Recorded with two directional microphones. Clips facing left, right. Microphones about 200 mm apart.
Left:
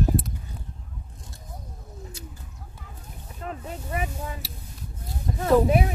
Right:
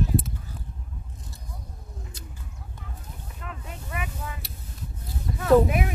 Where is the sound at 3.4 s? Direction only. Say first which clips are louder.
Left 7 dB; 35° left (ahead or behind).